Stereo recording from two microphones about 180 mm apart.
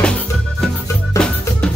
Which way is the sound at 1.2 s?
15° left (ahead or behind).